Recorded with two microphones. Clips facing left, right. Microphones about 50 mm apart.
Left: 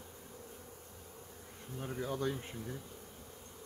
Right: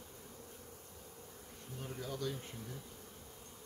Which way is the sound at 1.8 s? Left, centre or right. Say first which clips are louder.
Left 5 dB; left.